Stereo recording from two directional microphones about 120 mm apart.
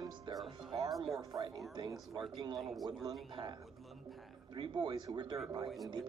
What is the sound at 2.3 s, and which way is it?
Speech, 40° right (ahead or behind).